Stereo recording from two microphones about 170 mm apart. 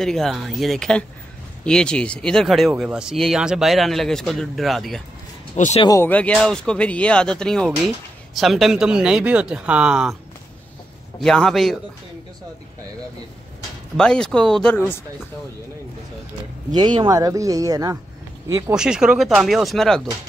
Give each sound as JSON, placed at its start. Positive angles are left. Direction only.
{"t": 0.0, "sound": "a man's voice", "side_deg": 0}
{"t": 5.8, "sound": "speech", "side_deg": 20}
{"t": 6.0, "sound": "a man's voice", "side_deg": 10}
{"t": 11.1, "sound": "a man's voice", "side_deg": 5}
{"t": 13.9, "sound": "a man's voice", "side_deg": 5}
{"t": 16.7, "sound": "speech", "side_deg": -25}
{"t": 18.8, "sound": "a man's voice", "side_deg": -5}